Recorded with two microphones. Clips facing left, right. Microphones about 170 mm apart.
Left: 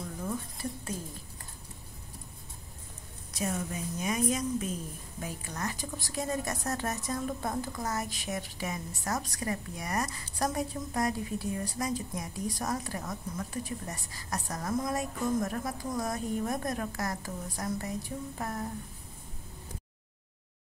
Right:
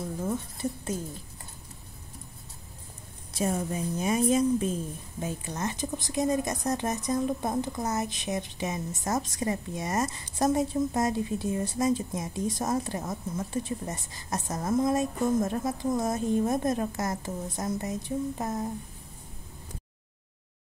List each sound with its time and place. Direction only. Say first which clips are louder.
0.2 s speech: right 4 dB; 25° right (ahead or behind)
3.3 s a woman's voice: right 5 dB; 30° right (ahead or behind)